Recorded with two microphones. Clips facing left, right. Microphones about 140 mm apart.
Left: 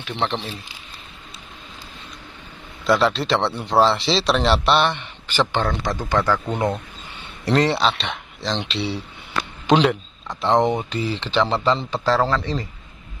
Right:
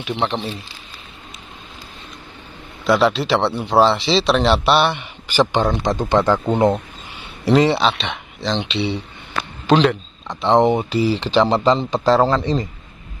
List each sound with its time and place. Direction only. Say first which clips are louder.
0.0 s speech: right 3 dB; 10° right (ahead or behind)
2.9 s speech: right 3 dB; 5° right (ahead or behind); by 6.8 s 25° right (ahead or behind)
7.4 s speech: right 4 dB; centre (ahead or behind)
9.7 s speech: right 2 dB; 10° left (ahead or behind)
10.2 s speech: right 3 dB; centre (ahead or behind)
10.9 s speech: right 7 dB; 10° right (ahead or behind)